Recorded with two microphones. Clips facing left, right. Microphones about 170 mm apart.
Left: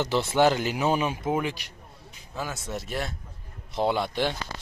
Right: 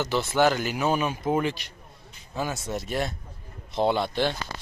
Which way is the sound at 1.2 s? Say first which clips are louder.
Right 2 dB; 5° left (ahead or behind).